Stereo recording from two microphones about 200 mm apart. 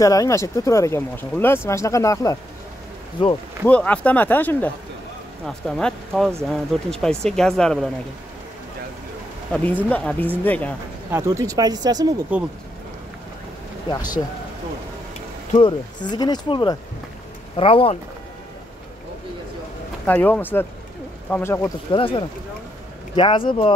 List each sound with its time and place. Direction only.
0.0 s speech: 15° left (ahead or behind)
3.6 s speech: 10° left (ahead or behind)
9.5 s speech: 5° left (ahead or behind)
11.1 s speech: 15° right (ahead or behind)
12.3 s speech: 5° right (ahead or behind)
13.8 s speech: 20° left (ahead or behind)
15.5 s speech: 20° left (ahead or behind)
20.1 s speech: 10° left (ahead or behind)
21.9 s speech: 25° left (ahead or behind)